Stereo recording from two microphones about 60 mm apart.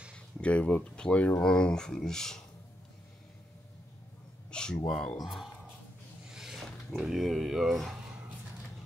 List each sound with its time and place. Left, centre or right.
0.4 s speech: left
4.5 s a sound: centre
4.8 s speech: centre
6.3 s wild animals: centre
7.0 s speech: centre